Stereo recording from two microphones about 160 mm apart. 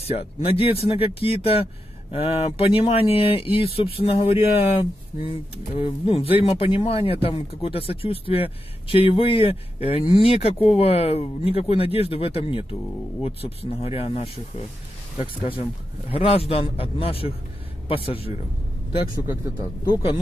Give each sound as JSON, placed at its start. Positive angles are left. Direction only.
{"t": 0.0, "sound": "speech", "side_deg": 40}
{"t": 16.1, "sound": "speech", "side_deg": 35}
{"t": 19.8, "sound": "speech", "side_deg": 30}